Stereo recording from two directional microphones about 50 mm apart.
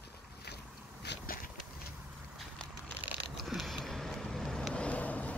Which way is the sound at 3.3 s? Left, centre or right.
Centre.